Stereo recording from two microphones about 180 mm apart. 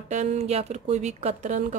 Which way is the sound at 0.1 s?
40° right (ahead or behind).